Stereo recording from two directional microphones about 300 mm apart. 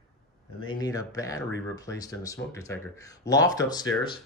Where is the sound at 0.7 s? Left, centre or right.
Centre.